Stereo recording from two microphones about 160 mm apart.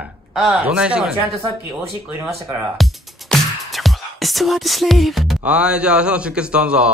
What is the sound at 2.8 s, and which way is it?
Music, centre (ahead or behind).